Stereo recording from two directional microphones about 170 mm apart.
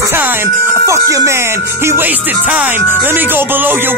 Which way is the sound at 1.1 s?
15° right (ahead or behind).